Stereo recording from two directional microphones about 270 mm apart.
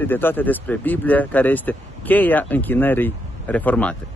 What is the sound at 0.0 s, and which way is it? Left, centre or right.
Speech, centre.